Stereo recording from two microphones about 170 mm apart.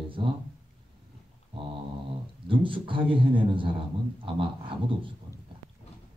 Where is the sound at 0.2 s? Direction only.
30° right (ahead or behind).